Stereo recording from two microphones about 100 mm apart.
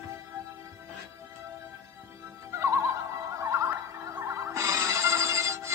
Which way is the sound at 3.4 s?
25° right (ahead or behind).